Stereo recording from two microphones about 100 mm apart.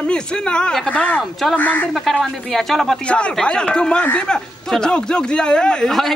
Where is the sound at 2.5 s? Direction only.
5° left (ahead or behind).